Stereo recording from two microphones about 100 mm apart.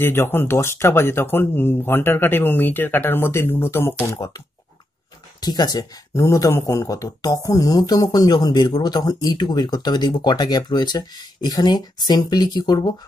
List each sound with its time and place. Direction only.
0.0 s speech: 20° left (ahead or behind)
5.4 s speech: 45° left (ahead or behind)
6.1 s speech: 30° left (ahead or behind); by 12.9 s 45° left (ahead or behind)